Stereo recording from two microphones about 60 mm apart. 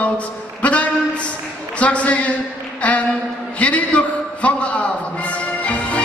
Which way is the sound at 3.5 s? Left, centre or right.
Left.